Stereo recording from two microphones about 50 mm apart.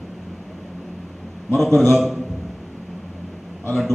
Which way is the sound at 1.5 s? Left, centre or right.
Centre.